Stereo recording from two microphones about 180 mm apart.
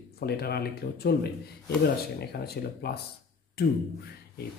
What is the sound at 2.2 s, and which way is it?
Speech, 60° left (ahead or behind).